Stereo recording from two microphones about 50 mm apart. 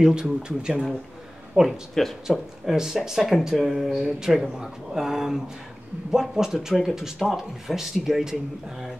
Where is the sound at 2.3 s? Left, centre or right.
Centre.